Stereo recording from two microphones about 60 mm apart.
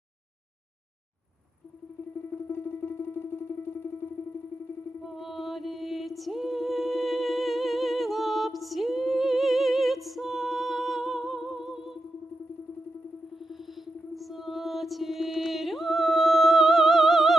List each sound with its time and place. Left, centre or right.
2.5 s music: left
5.0 s music: centre
13.5 s music: centre